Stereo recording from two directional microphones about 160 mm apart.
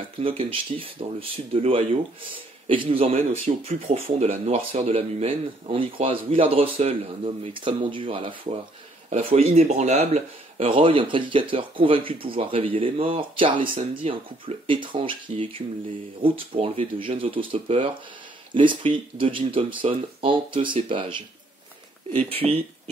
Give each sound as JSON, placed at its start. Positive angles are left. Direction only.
{"t": 0.2, "sound": "speech", "side_deg": -35}